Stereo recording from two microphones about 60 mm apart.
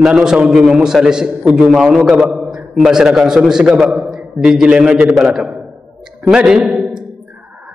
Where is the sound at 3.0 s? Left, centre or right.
Centre.